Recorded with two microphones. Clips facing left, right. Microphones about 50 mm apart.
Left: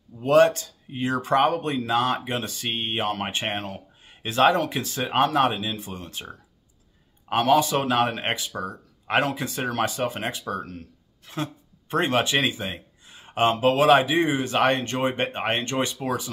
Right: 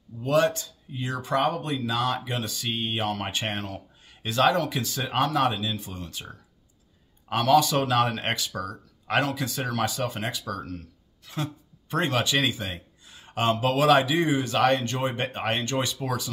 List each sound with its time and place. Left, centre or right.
0.2 s speech: left
7.2 s speech: left